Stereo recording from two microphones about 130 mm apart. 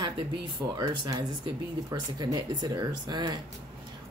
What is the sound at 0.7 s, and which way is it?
Speech, 30° right (ahead or behind).